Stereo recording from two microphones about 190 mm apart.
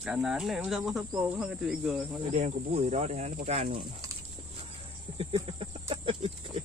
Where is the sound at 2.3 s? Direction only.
35° right (ahead or behind).